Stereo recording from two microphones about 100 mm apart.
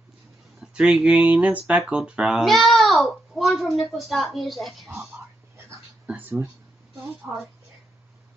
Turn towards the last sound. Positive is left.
turn(degrees=0)  # may be behind; listen again after turning